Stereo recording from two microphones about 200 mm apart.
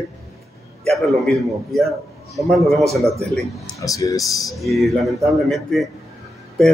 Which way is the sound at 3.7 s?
15° left (ahead or behind).